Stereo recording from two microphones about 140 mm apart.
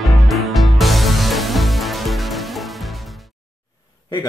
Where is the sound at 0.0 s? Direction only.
Centre (ahead or behind).